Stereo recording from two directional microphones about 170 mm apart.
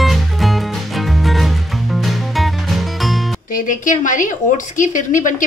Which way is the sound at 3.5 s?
50° left (ahead or behind).